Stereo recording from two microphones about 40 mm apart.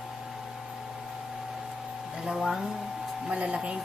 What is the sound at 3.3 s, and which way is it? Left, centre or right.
Speech, right.